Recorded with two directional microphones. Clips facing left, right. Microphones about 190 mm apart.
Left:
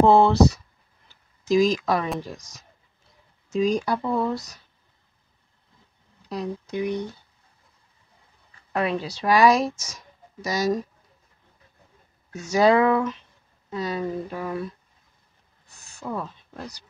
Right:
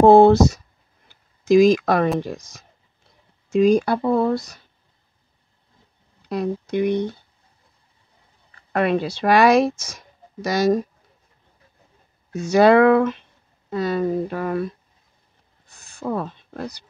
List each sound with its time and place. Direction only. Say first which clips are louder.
0.0 s a sound: right 6 dB; 50° right (ahead or behind)
1.4 s speech: right 6 dB; 55° right (ahead or behind)
3.5 s speech: right 6 dB; 60° right (ahead or behind)
6.2 s speech: right 6 dB; 60° right (ahead or behind)
8.7 s speech: right 5 dB; 60° right (ahead or behind)
12.4 s speech: right 5 dB; 65° right (ahead or behind)
15.9 s a sound: right 6 dB; 55° right (ahead or behind)